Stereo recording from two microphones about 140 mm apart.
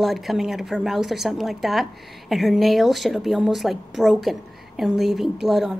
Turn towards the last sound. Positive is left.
turn(degrees=0)  # may be behind; listen again after turning